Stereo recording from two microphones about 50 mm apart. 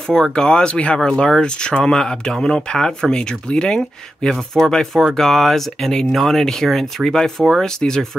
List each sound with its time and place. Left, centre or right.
0.1 s speech: centre